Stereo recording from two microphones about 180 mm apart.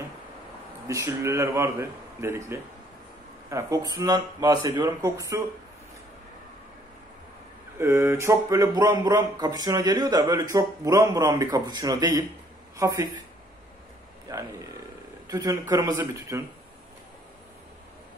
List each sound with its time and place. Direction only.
0.8 s speech: 15° right (ahead or behind)
7.8 s speech: 15° right (ahead or behind)
15.2 s speech: 20° right (ahead or behind)